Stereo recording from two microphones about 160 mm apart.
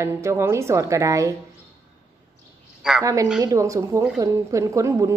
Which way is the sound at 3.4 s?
20° right (ahead or behind).